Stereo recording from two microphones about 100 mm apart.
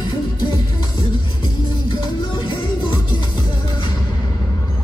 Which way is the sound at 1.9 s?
55° left (ahead or behind).